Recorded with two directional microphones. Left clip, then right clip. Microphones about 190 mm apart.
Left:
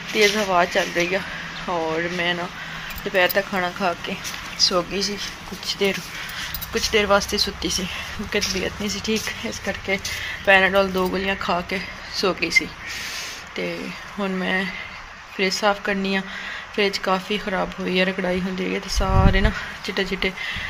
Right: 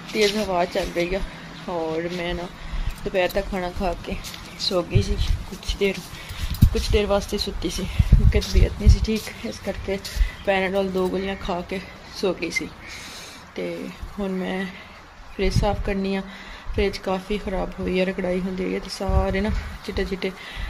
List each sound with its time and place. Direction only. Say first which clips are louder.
0.1 s speech: left 3 dB; 5° right (ahead or behind)
1.7 s speech: left 2 dB; 20° left (ahead or behind)
2.0 s speech: left 4 dB; centre (ahead or behind)
5.7 s speech: left 2 dB; centre (ahead or behind)
14.2 s speech: left 4 dB; centre (ahead or behind)